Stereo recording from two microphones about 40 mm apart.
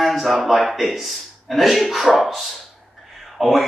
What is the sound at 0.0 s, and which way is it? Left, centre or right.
A man's voice, centre.